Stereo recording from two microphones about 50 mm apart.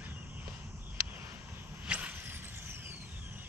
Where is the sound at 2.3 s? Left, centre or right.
Right.